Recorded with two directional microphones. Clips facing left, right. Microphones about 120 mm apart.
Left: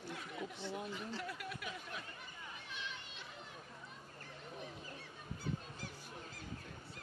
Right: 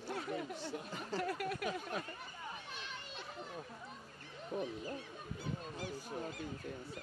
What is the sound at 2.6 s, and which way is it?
Children playing, 40° right (ahead or behind).